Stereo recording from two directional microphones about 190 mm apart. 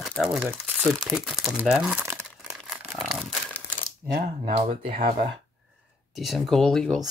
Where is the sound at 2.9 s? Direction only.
Centre (ahead or behind).